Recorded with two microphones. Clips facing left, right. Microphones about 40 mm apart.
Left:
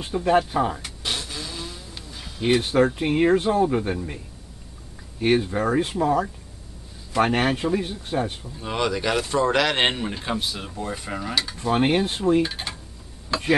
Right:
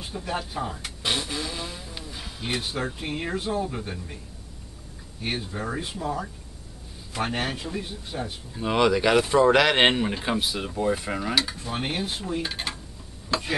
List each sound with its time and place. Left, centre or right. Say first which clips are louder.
0.0 s speech: left 11 dB; left
0.8 s vehicle: right 2 dB; centre
2.6 s speech: left 10 dB; left
5.2 s speech: left 10 dB; left
7.2 s speech: left 8 dB; left
8.5 s speech: right 4 dB; centre
11.6 s speech: left 9 dB; left
12.4 s speech: even; centre